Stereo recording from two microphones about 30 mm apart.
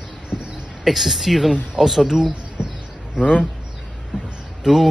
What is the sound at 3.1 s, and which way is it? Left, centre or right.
Speech, left.